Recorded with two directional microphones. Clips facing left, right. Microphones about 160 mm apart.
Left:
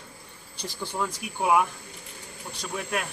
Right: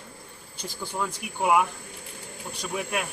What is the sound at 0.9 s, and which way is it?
Speech, centre (ahead or behind).